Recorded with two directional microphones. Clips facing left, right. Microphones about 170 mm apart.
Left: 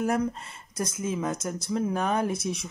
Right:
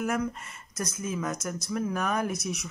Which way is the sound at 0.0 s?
30° left (ahead or behind).